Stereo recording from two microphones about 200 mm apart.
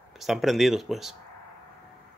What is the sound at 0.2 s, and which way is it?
Speech, centre (ahead or behind).